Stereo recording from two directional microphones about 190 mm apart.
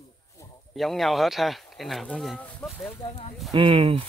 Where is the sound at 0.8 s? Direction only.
Centre (ahead or behind).